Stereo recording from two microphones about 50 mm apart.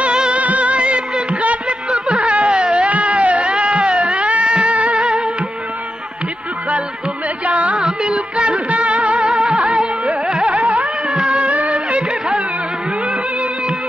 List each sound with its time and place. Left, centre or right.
0.0 s music: right
7.4 s music: right
7.7 s music: centre
9.3 s music: centre
10.4 s carnatic music: right
10.8 s music: centre; by 12.0 s right